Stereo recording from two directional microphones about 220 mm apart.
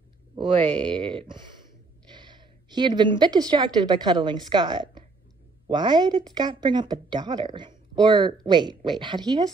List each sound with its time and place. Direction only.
0.4 s a woman's voice: 20° right (ahead or behind)